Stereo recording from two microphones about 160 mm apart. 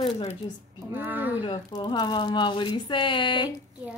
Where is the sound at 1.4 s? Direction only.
30° left (ahead or behind).